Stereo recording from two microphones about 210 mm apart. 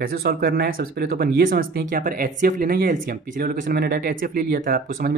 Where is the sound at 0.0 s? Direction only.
45° right (ahead or behind).